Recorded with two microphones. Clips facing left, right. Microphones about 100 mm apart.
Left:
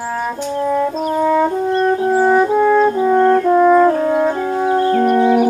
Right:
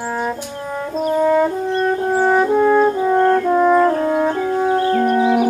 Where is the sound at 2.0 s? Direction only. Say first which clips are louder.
Left 2 dB; 5° left (ahead or behind).